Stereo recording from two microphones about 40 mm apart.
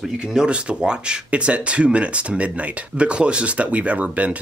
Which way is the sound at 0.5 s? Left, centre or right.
Right.